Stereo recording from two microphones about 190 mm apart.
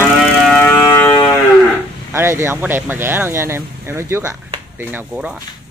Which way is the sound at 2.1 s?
15° right (ahead or behind).